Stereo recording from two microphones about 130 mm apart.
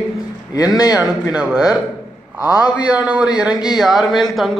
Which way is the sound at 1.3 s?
5° right (ahead or behind).